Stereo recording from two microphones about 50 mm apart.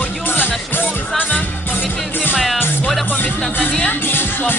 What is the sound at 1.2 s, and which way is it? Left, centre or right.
Music, left.